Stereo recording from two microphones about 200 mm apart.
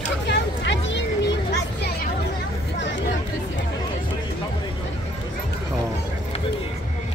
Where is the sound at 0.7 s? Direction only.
65° left (ahead or behind).